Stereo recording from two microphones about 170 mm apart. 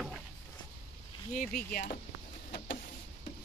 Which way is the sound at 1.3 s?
55° left (ahead or behind).